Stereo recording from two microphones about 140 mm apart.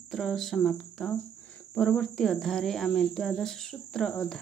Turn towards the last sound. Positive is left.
turn(degrees=5)  # may be behind; listen again after turning